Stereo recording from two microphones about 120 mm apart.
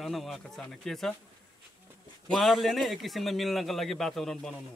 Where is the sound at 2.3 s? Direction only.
Centre (ahead or behind).